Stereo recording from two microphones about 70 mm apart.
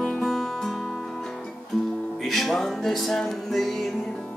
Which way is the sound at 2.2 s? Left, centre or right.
Centre.